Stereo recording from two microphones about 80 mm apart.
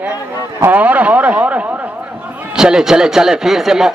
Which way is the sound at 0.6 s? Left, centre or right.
Right.